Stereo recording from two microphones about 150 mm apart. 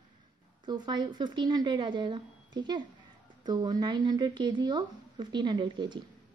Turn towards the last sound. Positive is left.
turn(degrees=-30)  # may be behind; listen again after turning